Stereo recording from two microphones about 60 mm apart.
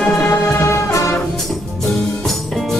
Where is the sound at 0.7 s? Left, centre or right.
Left.